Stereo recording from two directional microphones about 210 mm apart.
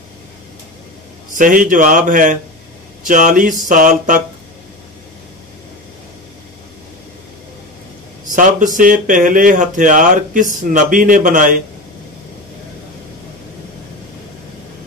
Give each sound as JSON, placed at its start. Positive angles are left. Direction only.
{"t": 1.3, "sound": "speech", "side_deg": -40}
{"t": 8.4, "sound": "speech", "side_deg": -40}